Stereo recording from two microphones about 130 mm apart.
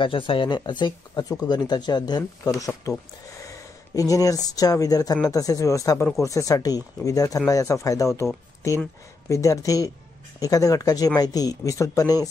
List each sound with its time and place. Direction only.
0.0 s speech: 40° left (ahead or behind)